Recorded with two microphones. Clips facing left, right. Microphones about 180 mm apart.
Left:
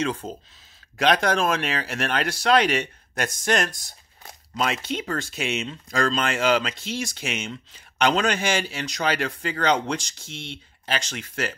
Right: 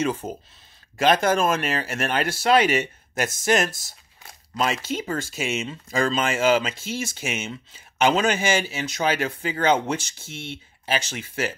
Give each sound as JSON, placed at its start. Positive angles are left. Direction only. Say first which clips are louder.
{"t": 0.0, "sound": "speech", "louder": "right 2 dB", "side_deg": -10}